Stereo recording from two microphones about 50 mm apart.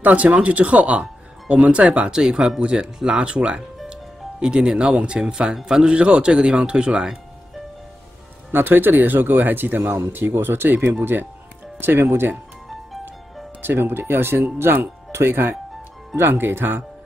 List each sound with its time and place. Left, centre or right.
0.0 s speech: right
3.9 s music: centre
5.2 s speech: centre
8.5 s speech: right
13.6 s speech: right